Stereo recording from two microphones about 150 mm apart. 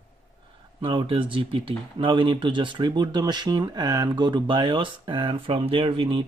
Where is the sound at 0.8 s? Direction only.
35° right (ahead or behind).